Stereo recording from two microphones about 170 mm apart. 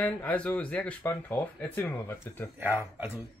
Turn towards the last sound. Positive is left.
turn(degrees=-10)  # may be behind; listen again after turning